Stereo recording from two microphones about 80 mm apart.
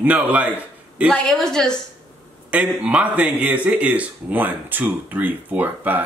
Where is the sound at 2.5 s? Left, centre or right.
Centre.